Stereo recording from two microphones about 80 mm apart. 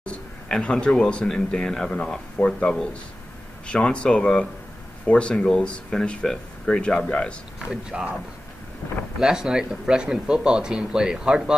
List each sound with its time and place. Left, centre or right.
0.0 s speech: centre
7.5 s speech: centre
9.2 s speech: centre